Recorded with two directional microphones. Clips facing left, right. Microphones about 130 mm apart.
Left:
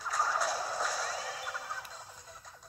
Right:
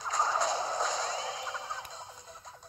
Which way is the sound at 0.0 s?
20° right (ahead or behind).